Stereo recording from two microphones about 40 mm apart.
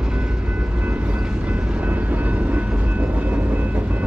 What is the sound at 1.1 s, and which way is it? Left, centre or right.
Train, right.